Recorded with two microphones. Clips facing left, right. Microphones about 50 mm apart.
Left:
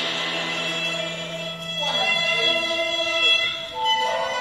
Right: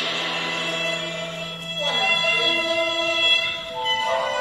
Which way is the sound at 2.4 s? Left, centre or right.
Right.